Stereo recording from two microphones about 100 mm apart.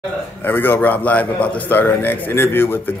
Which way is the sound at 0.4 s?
20° left (ahead or behind).